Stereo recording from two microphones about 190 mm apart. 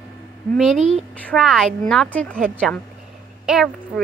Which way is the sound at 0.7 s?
35° right (ahead or behind).